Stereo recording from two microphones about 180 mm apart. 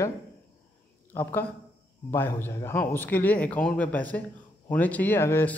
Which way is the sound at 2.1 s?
15° left (ahead or behind).